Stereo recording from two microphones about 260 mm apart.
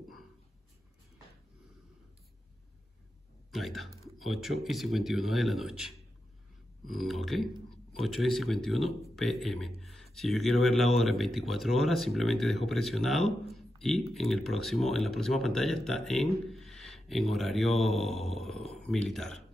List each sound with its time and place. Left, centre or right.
3.5 s speech: centre